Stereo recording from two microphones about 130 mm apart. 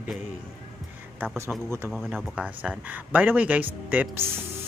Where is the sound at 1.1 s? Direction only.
15° right (ahead or behind).